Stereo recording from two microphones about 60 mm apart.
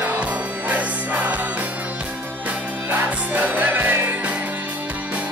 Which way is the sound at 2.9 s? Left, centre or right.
Right.